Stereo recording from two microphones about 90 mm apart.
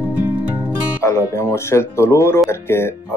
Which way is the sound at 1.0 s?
30° left (ahead or behind).